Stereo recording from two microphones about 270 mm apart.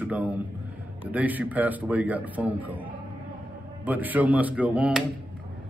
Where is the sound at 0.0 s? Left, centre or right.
Centre.